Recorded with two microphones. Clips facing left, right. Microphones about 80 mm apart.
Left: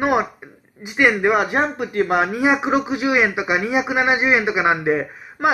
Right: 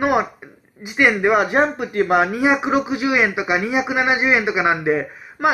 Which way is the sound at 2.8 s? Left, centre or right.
Left.